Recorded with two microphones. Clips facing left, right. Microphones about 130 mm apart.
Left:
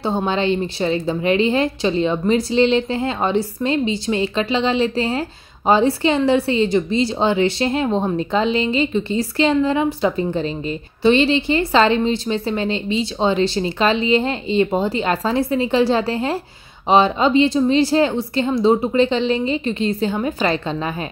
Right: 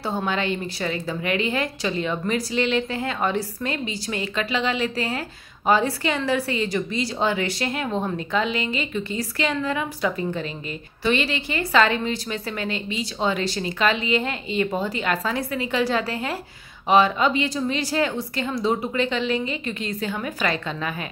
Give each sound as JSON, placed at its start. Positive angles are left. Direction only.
{"t": 0.0, "sound": "a woman's voice", "side_deg": 25}